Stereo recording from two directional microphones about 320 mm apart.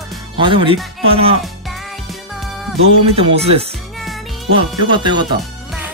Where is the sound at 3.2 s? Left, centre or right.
Centre.